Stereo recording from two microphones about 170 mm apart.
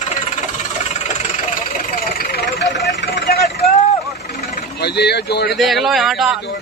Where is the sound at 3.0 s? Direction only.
75° left (ahead or behind).